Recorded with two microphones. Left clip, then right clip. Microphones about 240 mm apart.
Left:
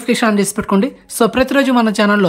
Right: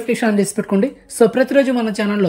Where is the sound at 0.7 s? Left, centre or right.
Left.